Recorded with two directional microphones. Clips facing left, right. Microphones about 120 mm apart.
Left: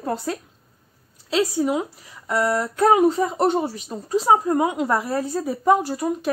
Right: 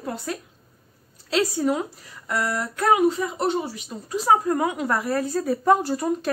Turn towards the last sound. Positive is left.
turn(degrees=10)  # may be behind; listen again after turning